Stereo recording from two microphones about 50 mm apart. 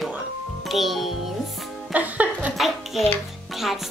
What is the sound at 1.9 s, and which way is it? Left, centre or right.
Speech, right.